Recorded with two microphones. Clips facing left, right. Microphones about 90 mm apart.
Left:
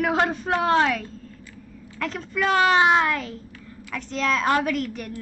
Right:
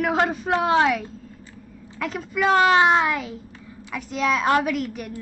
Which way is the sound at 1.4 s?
30° right (ahead or behind).